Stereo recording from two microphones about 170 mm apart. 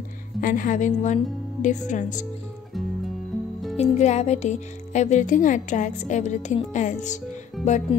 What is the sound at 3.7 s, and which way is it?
Speech, 40° left (ahead or behind).